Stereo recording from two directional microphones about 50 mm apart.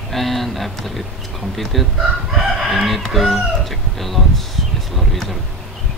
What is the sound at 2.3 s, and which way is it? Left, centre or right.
Chicken, centre.